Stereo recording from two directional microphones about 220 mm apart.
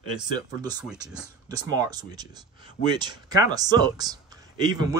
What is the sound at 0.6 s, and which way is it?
Speech, 20° right (ahead or behind).